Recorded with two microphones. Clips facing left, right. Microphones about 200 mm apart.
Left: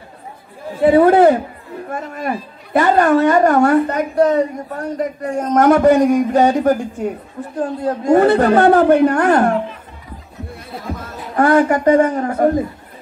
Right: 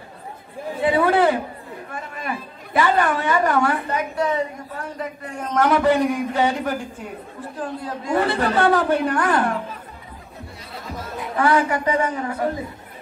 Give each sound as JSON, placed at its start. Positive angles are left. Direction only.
{"t": 0.8, "sound": "a woman's voice", "side_deg": 45}
{"t": 10.7, "sound": "speech", "side_deg": 50}